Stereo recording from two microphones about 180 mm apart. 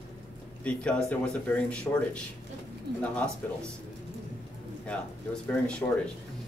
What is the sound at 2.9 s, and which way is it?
Speech, 65° right (ahead or behind).